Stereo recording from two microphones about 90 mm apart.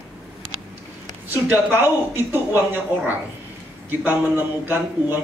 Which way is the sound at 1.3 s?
25° right (ahead or behind).